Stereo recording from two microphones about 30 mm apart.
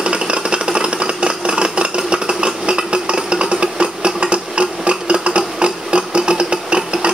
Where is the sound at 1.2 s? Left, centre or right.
Right.